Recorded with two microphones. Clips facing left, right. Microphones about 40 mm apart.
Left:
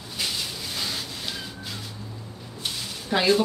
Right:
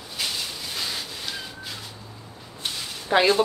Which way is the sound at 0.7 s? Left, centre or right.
Centre.